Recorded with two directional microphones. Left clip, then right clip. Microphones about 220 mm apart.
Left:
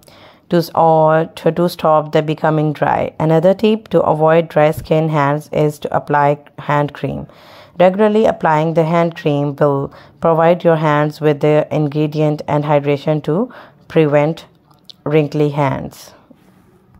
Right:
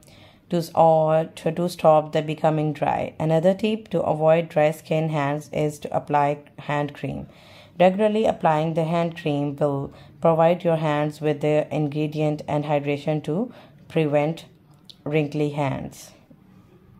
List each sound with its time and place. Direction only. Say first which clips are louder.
0.5 s speech: left 6 dB; 25° left (ahead or behind)